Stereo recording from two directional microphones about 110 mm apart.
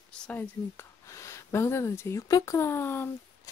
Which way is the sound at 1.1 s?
25° left (ahead or behind).